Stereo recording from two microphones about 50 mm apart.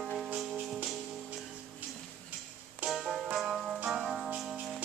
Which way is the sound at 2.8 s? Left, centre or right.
Centre.